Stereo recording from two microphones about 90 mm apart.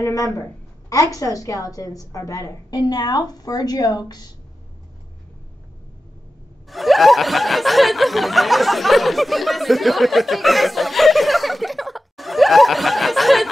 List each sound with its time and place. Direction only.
0.0 s a woman's voice: 35° left (ahead or behind)
6.7 s snicker: centre (ahead or behind)